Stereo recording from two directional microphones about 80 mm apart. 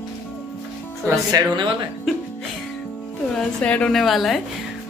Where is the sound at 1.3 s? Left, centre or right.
Right.